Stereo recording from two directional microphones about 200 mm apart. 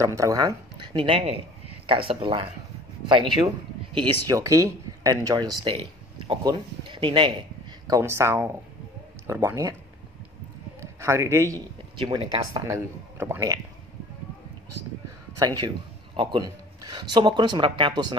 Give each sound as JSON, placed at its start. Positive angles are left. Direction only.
{"t": 0.0, "sound": "a woman's voice", "side_deg": -15}
{"t": 4.0, "sound": "speech", "side_deg": -15}
{"t": 10.8, "sound": "a man's voice", "side_deg": -15}
{"t": 15.3, "sound": "speech", "side_deg": -20}